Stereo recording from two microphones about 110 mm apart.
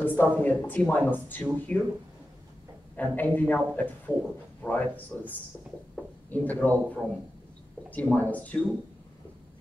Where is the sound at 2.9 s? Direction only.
15° left (ahead or behind).